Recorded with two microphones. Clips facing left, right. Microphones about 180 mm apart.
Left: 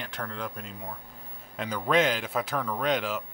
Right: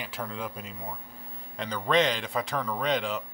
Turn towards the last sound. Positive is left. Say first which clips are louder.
# left 1 dB
turn(degrees=0)  # may be behind; listen again after turning